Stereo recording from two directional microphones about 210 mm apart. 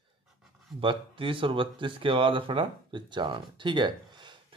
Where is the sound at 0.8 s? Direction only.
25° right (ahead or behind).